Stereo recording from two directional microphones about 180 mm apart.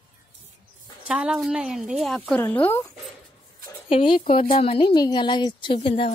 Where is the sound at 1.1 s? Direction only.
5° right (ahead or behind); by 2.8 s 10° left (ahead or behind).